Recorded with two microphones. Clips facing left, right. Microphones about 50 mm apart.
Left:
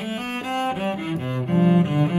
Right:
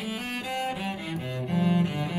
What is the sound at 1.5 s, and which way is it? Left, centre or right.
Cello, left.